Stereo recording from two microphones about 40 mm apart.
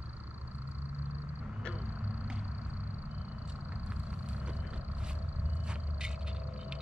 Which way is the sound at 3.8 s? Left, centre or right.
Right.